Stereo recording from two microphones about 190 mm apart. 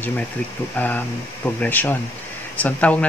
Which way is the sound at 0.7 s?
10° left (ahead or behind).